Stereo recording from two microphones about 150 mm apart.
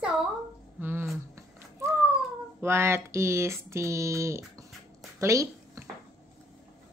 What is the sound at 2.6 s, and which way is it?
Speech, 15° right (ahead or behind).